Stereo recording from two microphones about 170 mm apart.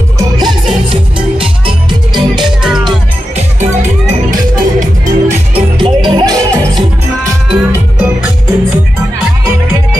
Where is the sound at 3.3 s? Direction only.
40° right (ahead or behind).